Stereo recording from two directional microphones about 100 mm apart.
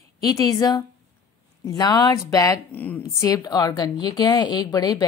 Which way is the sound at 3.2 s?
40° left (ahead or behind).